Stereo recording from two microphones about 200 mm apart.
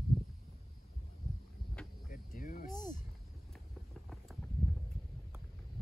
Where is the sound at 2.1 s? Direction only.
45° left (ahead or behind).